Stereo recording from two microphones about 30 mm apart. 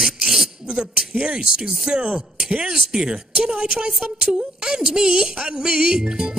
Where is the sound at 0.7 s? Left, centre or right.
Right.